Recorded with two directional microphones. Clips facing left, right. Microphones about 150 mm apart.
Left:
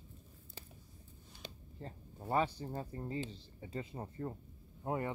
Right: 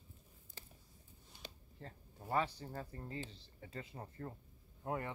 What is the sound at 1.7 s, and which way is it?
Speech, 25° left (ahead or behind).